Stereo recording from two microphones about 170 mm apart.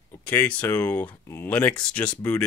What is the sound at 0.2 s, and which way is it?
Speech, 10° left (ahead or behind).